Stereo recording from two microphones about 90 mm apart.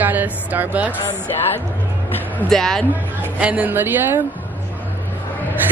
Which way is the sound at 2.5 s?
5° left (ahead or behind).